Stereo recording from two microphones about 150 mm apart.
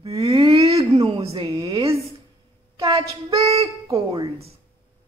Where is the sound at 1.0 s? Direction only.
35° right (ahead or behind).